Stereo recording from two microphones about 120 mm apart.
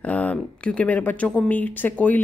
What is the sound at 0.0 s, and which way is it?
Speech, 10° left (ahead or behind).